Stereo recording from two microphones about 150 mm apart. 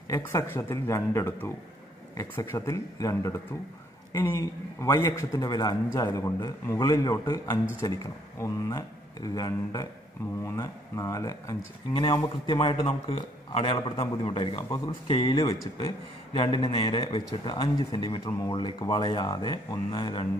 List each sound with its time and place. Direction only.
0.1 s a man's voice: 20° left (ahead or behind)